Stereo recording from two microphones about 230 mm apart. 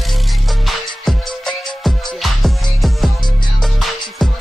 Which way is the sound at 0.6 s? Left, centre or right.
Centre.